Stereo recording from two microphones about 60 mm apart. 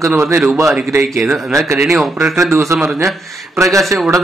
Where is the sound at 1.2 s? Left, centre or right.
Centre.